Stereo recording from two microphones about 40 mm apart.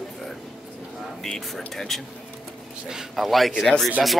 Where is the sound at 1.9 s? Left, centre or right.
Centre.